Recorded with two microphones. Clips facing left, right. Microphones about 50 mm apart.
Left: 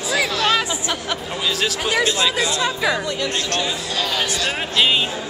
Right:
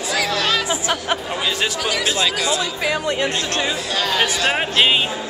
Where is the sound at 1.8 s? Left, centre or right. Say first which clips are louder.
Left 2 dB; left.